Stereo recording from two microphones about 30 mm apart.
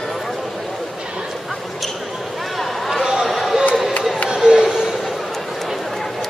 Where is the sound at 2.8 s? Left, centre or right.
Centre.